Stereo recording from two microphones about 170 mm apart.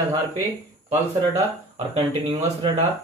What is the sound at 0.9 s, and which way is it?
Speech, 20° right (ahead or behind).